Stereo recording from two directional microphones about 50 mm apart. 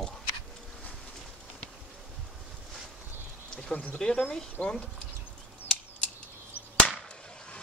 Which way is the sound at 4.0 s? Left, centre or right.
Centre.